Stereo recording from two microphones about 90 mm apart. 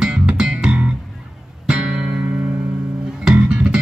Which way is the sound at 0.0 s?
10° right (ahead or behind).